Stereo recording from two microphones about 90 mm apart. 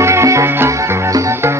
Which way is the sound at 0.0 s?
35° right (ahead or behind).